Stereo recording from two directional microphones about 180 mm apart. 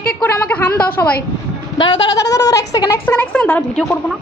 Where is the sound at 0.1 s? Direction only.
5° left (ahead or behind).